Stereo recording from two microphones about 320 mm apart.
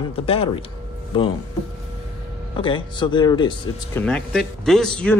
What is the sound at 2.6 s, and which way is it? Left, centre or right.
Speech, centre.